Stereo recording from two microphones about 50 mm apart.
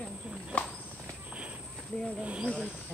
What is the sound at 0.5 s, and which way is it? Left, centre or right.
Speech, left.